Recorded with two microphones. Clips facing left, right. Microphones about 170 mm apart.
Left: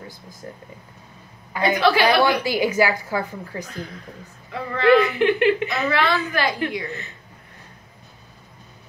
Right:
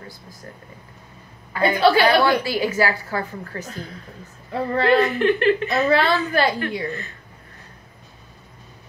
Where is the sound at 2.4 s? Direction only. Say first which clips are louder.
Left 1 dB; 15° left (ahead or behind).